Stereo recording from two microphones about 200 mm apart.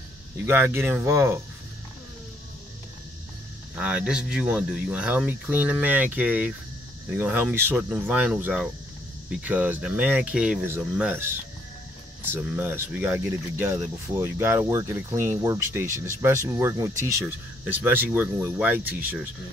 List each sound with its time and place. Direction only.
0.5 s speech: 10° right (ahead or behind)
3.7 s speech: 5° right (ahead or behind)
12.3 s speech: 10° right (ahead or behind)